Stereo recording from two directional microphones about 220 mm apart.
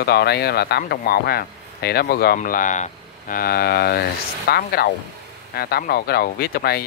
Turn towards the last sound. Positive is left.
turn(degrees=45)  # may be behind; listen again after turning